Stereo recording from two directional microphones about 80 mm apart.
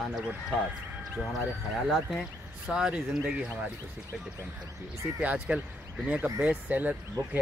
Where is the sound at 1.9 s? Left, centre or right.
Centre.